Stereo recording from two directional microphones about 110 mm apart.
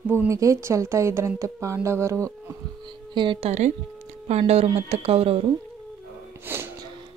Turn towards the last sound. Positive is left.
turn(degrees=-20)  # may be behind; listen again after turning